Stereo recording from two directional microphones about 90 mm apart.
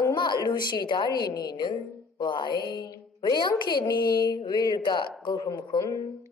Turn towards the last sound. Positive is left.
turn(degrees=55)  # may be behind; listen again after turning